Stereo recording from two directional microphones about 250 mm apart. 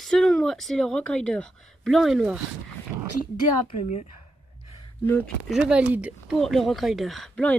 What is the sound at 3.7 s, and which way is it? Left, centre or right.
Speech, left.